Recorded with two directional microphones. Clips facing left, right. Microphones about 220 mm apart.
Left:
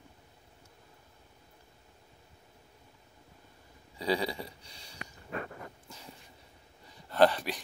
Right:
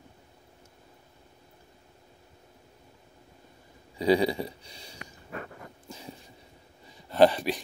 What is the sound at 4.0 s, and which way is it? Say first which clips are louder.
Speech: right 8 dB; 15° right (ahead or behind).